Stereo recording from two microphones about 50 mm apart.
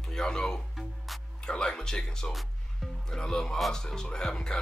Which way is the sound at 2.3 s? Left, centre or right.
Centre.